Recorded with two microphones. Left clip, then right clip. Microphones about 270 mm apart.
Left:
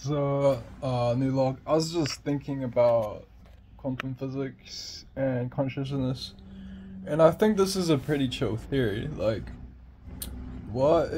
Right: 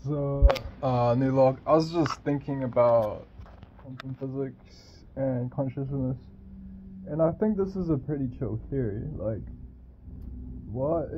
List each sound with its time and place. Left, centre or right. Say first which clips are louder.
0.0 s speech: left 3 dB; centre
0.7 s speech: right 3 dB; centre
4.2 s speech: even; centre
10.8 s speech: left 6 dB; centre